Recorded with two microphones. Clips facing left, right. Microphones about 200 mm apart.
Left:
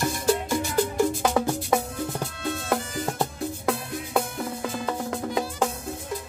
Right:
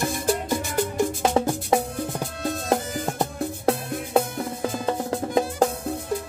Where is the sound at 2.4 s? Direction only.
40° right (ahead or behind).